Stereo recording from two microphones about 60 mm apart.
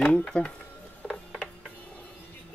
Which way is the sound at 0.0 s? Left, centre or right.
Centre.